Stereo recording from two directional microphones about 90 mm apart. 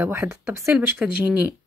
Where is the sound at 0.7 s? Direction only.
5° right (ahead or behind).